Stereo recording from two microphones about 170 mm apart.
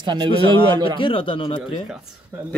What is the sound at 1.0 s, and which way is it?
Speech, 30° left (ahead or behind).